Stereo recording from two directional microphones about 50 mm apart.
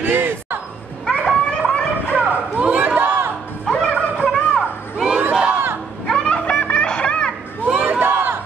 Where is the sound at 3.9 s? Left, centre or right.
Centre.